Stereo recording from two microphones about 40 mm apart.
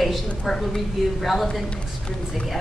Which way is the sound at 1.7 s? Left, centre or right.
Left.